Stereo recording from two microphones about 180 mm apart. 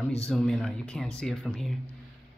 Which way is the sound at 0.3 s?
Centre (ahead or behind).